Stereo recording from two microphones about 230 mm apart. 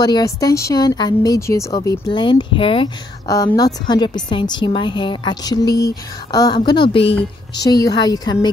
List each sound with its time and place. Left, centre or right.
0.0 s a woman's voice: centre